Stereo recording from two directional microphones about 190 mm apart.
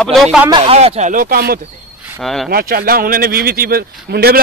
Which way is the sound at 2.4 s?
50° right (ahead or behind).